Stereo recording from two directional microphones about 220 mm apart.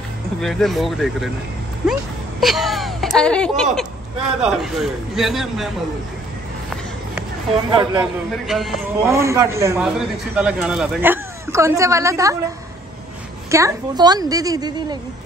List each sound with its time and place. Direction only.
0.4 s a man's voice: centre (ahead or behind)
2.4 s whimper: centre (ahead or behind)
4.4 s a man's voice: centre (ahead or behind)
7.7 s speech: 20° right (ahead or behind)
8.0 s a man's voice: centre (ahead or behind)
9.0 s a man's voice: 10° right (ahead or behind)
13.5 s a man's voice: 15° right (ahead or behind)